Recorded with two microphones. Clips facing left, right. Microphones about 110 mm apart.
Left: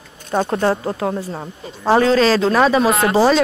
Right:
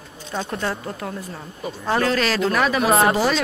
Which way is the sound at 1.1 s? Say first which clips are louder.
Left 8 dB; 30° left (ahead or behind).